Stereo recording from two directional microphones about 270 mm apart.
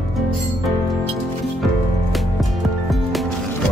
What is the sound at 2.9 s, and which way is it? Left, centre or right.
Music, centre.